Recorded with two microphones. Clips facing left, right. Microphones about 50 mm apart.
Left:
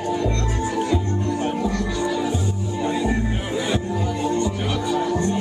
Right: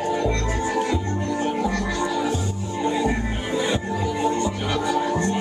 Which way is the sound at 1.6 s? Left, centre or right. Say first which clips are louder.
Even; right.